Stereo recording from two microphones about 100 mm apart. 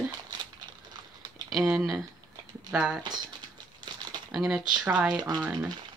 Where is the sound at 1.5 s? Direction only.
5° right (ahead or behind).